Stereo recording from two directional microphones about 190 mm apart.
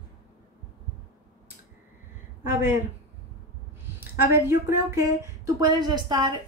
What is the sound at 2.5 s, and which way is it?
Speech, 10° right (ahead or behind).